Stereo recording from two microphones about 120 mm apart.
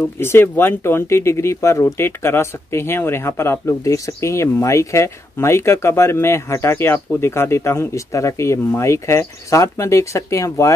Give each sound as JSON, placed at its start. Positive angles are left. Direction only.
{"t": 0.2, "sound": "speech", "side_deg": 20}